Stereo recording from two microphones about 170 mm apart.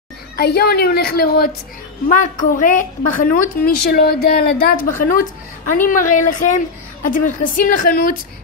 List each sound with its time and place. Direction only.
0.4 s a woman's voice: 65° left (ahead or behind)
2.0 s a woman's voice: 50° left (ahead or behind)
5.0 s a woman's voice: 55° left (ahead or behind)